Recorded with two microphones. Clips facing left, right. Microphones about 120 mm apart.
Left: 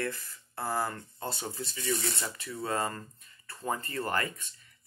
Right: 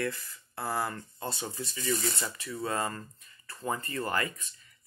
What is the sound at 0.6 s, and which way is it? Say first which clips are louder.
Speech: even; 35° left (ahead or behind).